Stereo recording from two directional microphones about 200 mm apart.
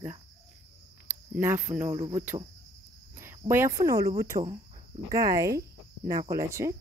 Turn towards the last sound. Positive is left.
turn(degrees=-15)  # may be behind; listen again after turning